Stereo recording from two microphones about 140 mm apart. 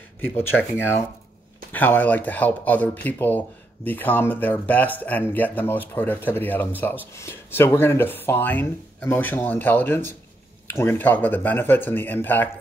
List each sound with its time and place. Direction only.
0.2 s speech: 15° left (ahead or behind)